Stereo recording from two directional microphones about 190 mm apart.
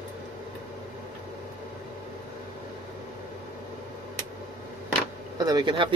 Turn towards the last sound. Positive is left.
turn(degrees=-25)  # may be behind; listen again after turning